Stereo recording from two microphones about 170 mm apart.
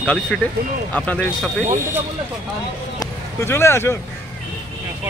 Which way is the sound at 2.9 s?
15° left (ahead or behind).